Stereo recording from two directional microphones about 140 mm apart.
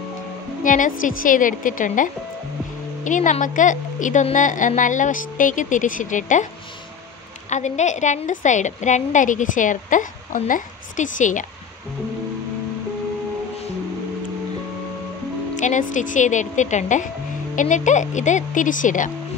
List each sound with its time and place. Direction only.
0.7 s a woman's voice: 70° left (ahead or behind)
7.4 s a woman's voice: 55° left (ahead or behind)
15.5 s a woman's voice: 65° left (ahead or behind)